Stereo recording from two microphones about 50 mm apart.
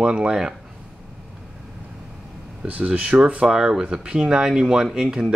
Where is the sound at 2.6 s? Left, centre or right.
Right.